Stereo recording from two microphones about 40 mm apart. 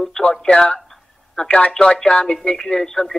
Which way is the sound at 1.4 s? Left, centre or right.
Left.